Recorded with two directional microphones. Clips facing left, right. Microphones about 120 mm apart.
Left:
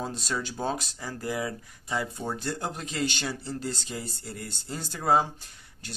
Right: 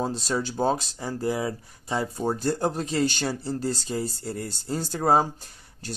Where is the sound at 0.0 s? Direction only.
30° right (ahead or behind).